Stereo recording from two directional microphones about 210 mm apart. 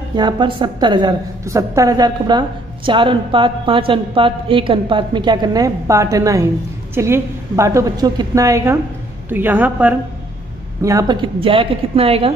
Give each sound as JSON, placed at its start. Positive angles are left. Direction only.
{"t": 0.1, "sound": "a woman's voice", "side_deg": -20}